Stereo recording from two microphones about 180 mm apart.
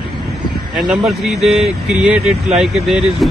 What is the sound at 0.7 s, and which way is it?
Speech, centre (ahead or behind).